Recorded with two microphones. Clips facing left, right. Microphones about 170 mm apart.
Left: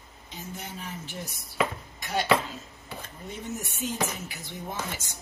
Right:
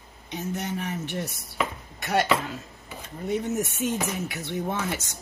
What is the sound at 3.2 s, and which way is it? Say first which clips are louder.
Speech: right 10 dB; 65° right (ahead or behind).